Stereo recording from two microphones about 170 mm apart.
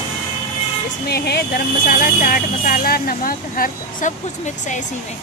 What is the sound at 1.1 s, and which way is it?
Speech, 70° left (ahead or behind).